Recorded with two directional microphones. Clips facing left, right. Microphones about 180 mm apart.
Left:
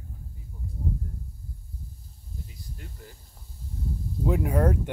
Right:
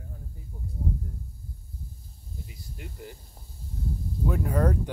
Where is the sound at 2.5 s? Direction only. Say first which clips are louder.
Right 2 dB; 15° right (ahead or behind).